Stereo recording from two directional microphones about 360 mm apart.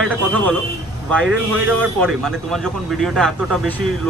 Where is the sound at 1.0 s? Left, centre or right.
Centre.